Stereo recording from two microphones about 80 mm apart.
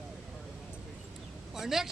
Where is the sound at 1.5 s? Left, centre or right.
Centre.